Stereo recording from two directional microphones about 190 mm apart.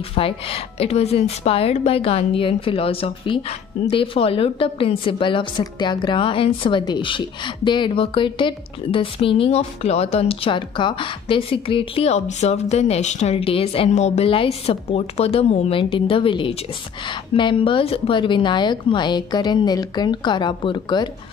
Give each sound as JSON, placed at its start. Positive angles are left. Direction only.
{"t": 0.1, "sound": "a woman's voice", "side_deg": 30}